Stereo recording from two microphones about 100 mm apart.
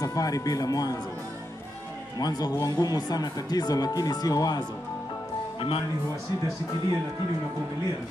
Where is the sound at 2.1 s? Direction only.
40° left (ahead or behind).